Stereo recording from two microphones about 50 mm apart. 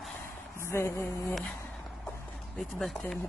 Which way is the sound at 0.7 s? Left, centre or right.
Left.